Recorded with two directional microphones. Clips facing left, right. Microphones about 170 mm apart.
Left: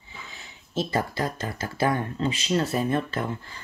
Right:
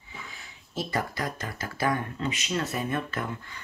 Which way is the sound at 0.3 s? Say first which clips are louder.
Left 5 dB; 25° left (ahead or behind).